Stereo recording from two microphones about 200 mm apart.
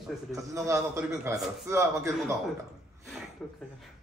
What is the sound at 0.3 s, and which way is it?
A man's voice, 15° right (ahead or behind).